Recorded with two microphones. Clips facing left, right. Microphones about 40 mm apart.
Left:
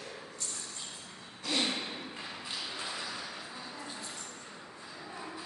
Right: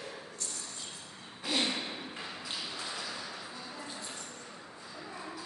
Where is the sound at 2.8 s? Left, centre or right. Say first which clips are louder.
Left 1 dB; centre.